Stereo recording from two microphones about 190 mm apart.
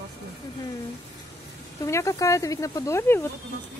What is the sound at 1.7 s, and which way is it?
Speech, 15° left (ahead or behind).